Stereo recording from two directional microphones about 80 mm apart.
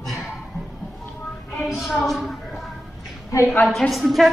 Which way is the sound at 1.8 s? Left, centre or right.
Centre.